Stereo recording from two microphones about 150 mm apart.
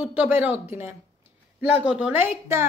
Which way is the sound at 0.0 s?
10° right (ahead or behind).